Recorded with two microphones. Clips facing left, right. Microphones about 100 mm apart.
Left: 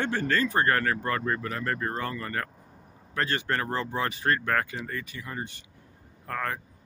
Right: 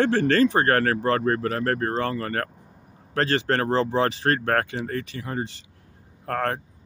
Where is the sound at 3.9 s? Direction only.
85° right.